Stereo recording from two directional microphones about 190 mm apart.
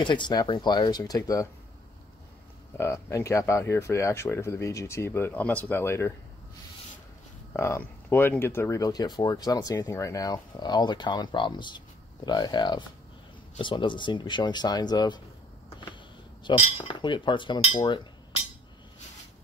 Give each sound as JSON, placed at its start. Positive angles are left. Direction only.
{"t": 0.0, "sound": "speech", "side_deg": 25}
{"t": 2.8, "sound": "speech", "side_deg": 15}
{"t": 7.5, "sound": "speech", "side_deg": 15}
{"t": 16.4, "sound": "speech", "side_deg": 25}